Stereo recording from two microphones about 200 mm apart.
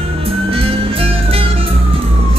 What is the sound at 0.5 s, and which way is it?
Music, 30° right (ahead or behind).